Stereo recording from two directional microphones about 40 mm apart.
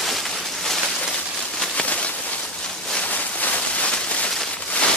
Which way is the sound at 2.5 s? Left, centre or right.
Centre.